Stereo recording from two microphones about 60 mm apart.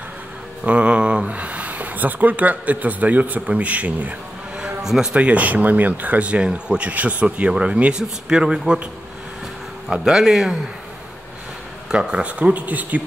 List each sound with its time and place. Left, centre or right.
0.7 s speech: right
4.6 s a sound: centre
5.1 s speech: right
9.8 s speech: centre
11.9 s speech: centre